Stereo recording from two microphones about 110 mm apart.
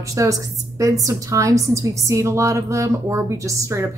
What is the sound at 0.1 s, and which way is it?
A woman's voice, 30° right (ahead or behind).